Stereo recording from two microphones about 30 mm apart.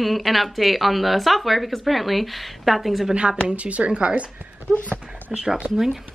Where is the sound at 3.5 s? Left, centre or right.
Right.